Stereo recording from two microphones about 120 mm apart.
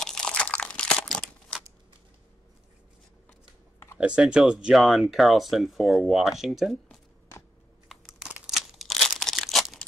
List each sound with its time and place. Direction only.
0.0 s crunch: 5° left (ahead or behind)
4.0 s speech: 10° right (ahead or behind)
7.3 s a sound: 20° left (ahead or behind)
7.9 s crumpling: centre (ahead or behind)